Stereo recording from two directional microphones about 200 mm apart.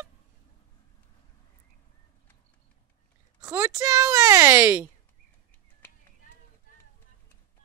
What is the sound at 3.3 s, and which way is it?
Speech, 15° right (ahead or behind).